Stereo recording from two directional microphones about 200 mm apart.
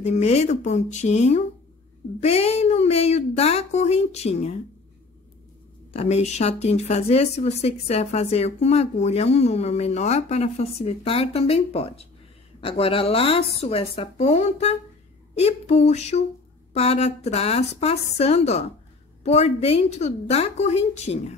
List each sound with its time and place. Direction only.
0.0 s speech: 35° left (ahead or behind)
5.9 s speech: 35° left (ahead or behind)